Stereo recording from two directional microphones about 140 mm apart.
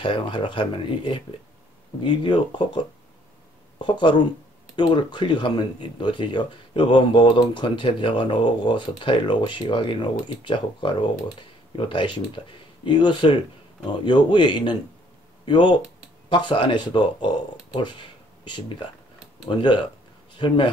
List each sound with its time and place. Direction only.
0.0 s speech: 35° left (ahead or behind)